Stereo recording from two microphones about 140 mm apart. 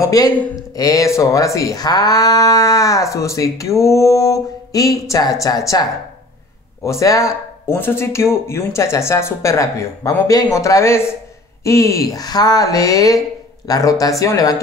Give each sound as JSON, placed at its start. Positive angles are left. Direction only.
{"t": 0.0, "sound": "speech", "side_deg": 25}